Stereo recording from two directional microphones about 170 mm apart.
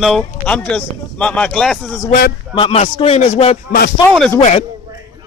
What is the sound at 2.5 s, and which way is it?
A man's voice, 35° left (ahead or behind).